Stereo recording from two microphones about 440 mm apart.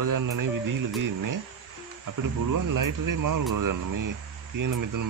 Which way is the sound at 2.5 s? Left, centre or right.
Right.